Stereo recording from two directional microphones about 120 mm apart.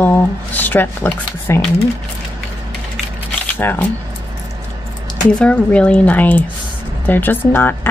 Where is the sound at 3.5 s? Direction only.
15° left (ahead or behind).